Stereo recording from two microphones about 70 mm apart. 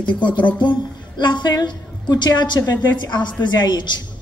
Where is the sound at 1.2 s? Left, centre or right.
Left.